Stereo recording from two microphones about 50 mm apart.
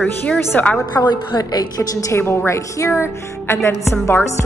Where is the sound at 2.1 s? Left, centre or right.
Left.